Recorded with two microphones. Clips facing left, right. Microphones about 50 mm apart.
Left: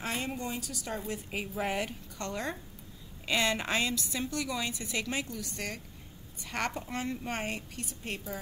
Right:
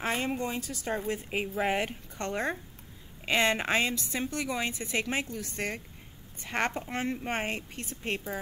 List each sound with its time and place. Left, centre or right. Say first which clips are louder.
0.0 s speech: right 4 dB; right